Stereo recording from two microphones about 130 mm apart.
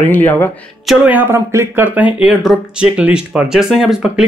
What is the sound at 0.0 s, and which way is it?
Speech, 15° left (ahead or behind).